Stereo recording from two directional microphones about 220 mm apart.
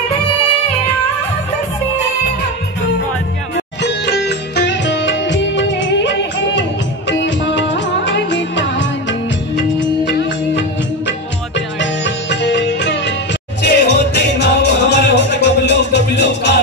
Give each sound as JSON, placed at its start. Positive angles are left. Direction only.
{"t": 3.8, "sound": "music", "side_deg": 50}
{"t": 7.1, "sound": "music of bollywood", "side_deg": 55}
{"t": 9.6, "sound": "music", "side_deg": 50}